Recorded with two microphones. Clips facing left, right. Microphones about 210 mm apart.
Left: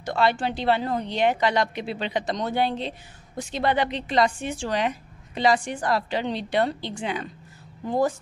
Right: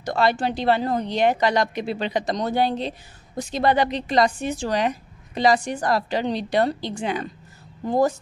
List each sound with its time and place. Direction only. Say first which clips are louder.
0.0 s a woman's voice: right 2 dB; 40° right (ahead or behind)